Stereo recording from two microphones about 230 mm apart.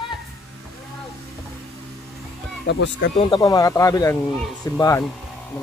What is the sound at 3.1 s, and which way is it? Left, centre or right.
Speech, left.